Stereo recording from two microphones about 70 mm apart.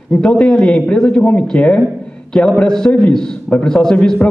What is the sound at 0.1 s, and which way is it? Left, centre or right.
Speech, centre.